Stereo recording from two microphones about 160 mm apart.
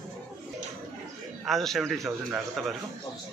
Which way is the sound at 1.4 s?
Centre (ahead or behind).